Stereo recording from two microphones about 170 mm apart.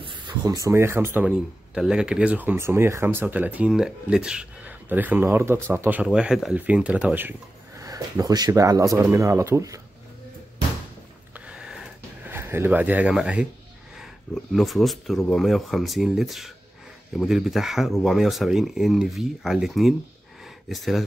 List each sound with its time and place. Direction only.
0.0 s speech: 20° right (ahead or behind)
1.3 s speech: 5° right (ahead or behind); by 9.8 s 20° right (ahead or behind)
11.3 s a sound: 5° right (ahead or behind)
13.9 s speech: centre (ahead or behind)